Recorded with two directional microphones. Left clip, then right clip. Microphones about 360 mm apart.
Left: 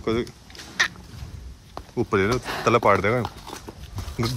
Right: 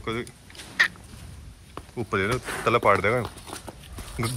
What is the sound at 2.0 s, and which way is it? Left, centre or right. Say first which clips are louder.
Speech: left 4 dB; centre.